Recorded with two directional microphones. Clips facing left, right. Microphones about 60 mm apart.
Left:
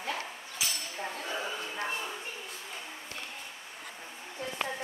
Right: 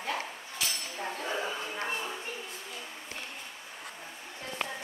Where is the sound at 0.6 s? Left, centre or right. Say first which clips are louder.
Even; centre.